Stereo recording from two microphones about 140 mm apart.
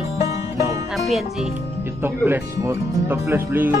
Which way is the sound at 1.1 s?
Centre (ahead or behind).